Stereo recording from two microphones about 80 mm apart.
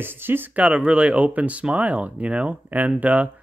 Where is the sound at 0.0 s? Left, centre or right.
Right.